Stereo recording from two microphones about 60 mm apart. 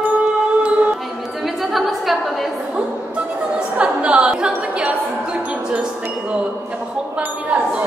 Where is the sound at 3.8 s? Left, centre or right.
Right.